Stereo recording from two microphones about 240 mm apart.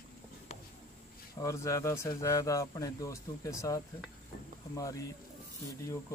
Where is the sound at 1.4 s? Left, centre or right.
Centre.